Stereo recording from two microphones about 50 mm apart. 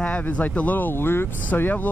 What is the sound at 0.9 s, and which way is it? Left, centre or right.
Speech, left.